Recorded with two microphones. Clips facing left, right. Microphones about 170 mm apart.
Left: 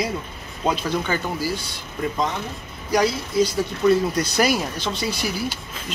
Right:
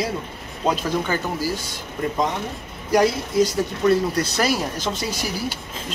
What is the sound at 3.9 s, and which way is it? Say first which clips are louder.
Speech: even; 30° right (ahead or behind).